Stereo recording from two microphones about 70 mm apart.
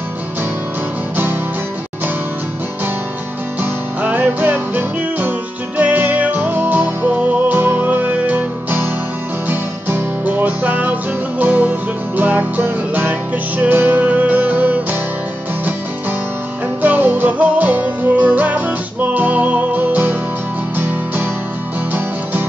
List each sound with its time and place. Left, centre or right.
4.0 s music: right
16.8 s music: right